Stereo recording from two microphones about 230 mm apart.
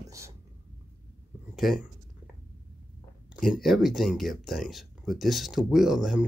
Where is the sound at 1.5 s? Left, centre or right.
Centre.